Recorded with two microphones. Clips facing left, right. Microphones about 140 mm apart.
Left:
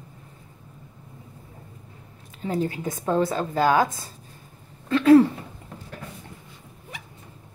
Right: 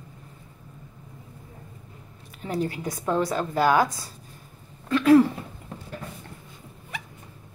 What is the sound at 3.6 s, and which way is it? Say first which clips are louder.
Speech: left 1 dB; 20° left (ahead or behind).